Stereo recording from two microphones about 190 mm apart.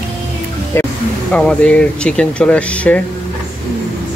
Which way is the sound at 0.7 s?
15° left (ahead or behind).